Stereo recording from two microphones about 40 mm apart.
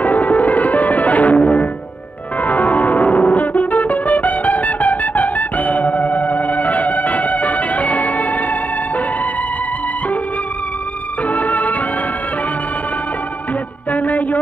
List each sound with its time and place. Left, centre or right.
0.0 s music: left
11.2 s music: left
13.9 s a sound: left